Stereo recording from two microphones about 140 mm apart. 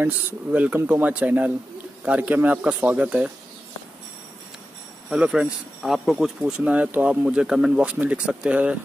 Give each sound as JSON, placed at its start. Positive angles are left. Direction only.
{"t": 0.0, "sound": "speech", "side_deg": -10}
{"t": 5.1, "sound": "speech", "side_deg": -5}